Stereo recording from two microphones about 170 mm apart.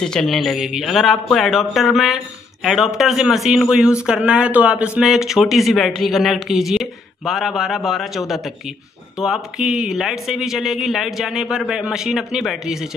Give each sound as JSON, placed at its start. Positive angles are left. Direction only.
{"t": 0.0, "sound": "speech", "side_deg": 5}